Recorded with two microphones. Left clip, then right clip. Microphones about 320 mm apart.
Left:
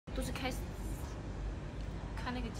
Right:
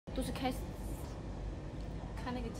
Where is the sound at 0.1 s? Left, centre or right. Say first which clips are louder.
Right 2 dB; right.